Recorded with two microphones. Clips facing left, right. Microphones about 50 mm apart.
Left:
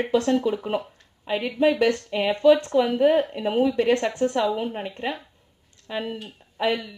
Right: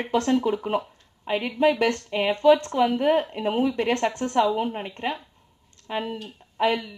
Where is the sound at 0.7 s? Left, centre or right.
Right.